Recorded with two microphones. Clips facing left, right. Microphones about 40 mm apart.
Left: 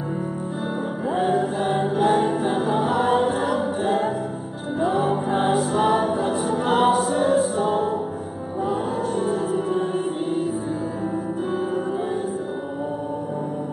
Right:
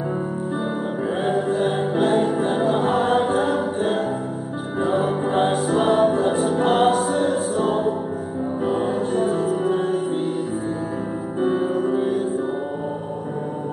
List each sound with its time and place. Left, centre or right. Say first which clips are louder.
1.8 s music: even; centre
2.1 s music: right 1 dB; centre
4.8 s music: even; centre
6.2 s a capella: right 3 dB; centre
6.8 s music: right 1 dB; centre
11.4 s music: right 7 dB; centre